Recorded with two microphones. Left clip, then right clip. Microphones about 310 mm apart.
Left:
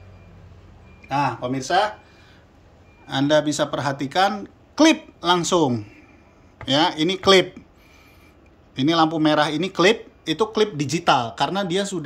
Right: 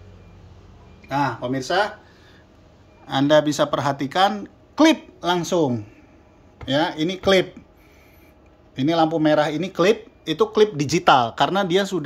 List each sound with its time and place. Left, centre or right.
1.0 s speech: centre
3.1 s speech: centre
8.7 s speech: centre